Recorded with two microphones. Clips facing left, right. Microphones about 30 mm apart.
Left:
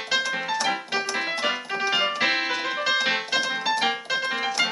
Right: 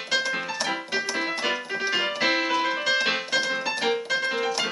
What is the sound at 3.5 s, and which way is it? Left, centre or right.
Music, centre.